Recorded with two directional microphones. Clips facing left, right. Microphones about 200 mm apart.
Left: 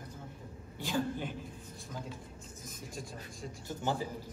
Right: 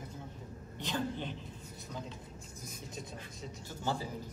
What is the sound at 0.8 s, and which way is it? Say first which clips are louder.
Speech: left 2 dB; 10° left (ahead or behind).